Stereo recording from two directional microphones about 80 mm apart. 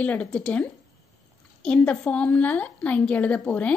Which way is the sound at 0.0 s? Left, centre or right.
Centre.